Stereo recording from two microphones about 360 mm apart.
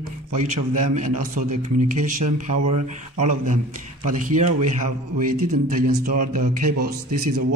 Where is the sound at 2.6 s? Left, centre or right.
Right.